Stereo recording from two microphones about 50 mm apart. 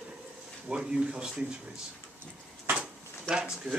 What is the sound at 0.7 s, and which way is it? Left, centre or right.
Speech, centre.